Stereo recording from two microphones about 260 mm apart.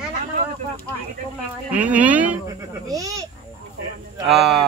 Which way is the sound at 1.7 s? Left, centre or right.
Centre.